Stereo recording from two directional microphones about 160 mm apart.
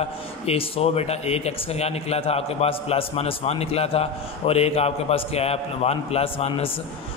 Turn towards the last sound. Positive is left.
turn(degrees=40)  # may be behind; listen again after turning